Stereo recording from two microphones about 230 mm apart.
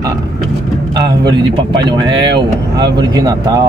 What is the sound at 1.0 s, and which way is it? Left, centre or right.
Speech, right.